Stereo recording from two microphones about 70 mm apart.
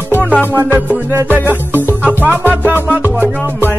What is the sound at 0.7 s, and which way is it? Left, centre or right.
Music, right.